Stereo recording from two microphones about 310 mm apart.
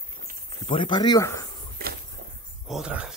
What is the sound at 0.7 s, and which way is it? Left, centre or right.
Speech, centre.